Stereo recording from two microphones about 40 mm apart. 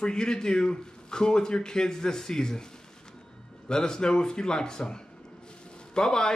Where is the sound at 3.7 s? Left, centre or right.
Centre.